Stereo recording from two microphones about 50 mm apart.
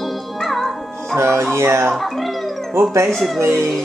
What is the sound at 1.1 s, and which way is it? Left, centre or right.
Speech, right.